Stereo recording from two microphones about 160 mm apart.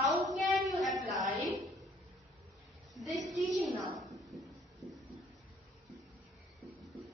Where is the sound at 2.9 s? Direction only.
Centre (ahead or behind).